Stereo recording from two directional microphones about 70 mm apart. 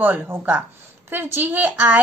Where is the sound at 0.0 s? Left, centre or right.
Right.